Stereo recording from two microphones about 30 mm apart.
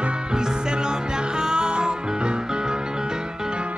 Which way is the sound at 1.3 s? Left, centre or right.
Right.